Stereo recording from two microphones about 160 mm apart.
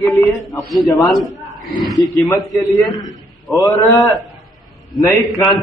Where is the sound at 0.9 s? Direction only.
Centre (ahead or behind).